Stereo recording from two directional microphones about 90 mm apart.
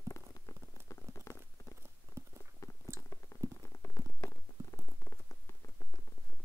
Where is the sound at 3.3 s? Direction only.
30° left (ahead or behind).